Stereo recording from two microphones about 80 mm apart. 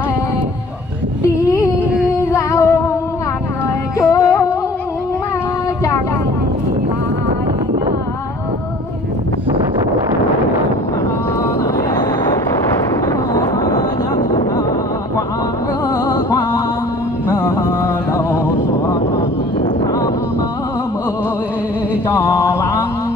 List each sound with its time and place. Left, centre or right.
2.3 s music: left
4.0 s music: left
16.1 s music: left
17.3 s a sound: left
22.1 s mantra: left